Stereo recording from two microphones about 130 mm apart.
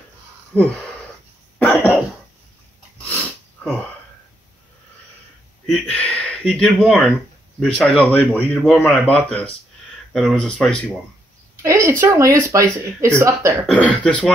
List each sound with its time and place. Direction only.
0.5 s speech: 10° left (ahead or behind)
1.6 s cough: 10° left (ahead or behind)
5.7 s speech: 10° left (ahead or behind)
11.6 s a sound: 25° right (ahead or behind)
12.1 s speech: 25° right (ahead or behind)
13.7 s speech: 10° left (ahead or behind)